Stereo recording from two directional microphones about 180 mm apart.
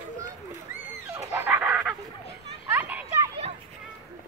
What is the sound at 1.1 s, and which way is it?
Dog, 10° right (ahead or behind).